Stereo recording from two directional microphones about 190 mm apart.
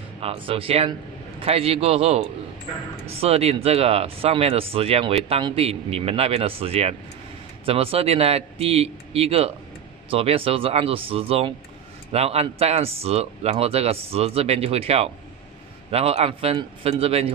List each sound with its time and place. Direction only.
0.2 s speech: 30° right (ahead or behind)